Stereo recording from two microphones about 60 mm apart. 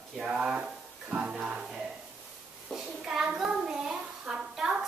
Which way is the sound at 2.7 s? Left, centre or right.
Centre.